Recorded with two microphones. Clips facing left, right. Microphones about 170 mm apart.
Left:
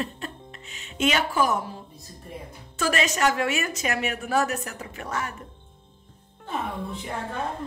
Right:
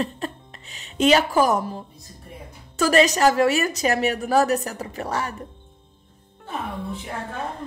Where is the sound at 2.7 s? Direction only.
40° right (ahead or behind).